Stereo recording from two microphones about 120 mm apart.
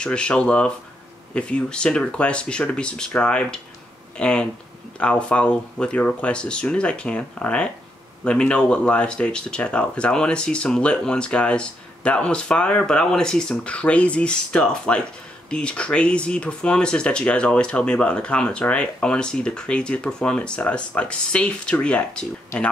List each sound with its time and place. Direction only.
0.0 s speech: 10° left (ahead or behind)